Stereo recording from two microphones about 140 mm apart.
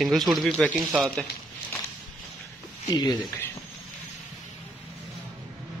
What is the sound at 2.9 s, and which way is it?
Speech, 25° left (ahead or behind).